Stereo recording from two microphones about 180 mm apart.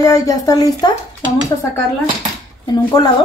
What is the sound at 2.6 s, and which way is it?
Speech, 20° left (ahead or behind).